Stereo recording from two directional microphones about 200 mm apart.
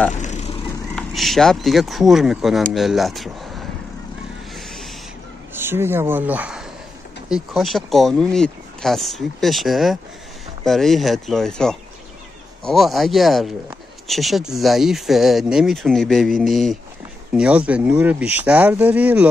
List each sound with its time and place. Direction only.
0.2 s vehicle: 35° left (ahead or behind)
0.9 s speech: centre (ahead or behind)
4.6 s owl: centre (ahead or behind)
5.5 s a man's voice: 10° right (ahead or behind)